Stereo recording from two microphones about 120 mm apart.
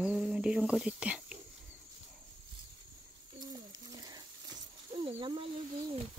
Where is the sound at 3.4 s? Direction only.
30° right (ahead or behind).